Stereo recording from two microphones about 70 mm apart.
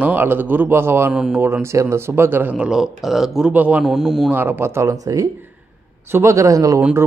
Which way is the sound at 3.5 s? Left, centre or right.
Centre.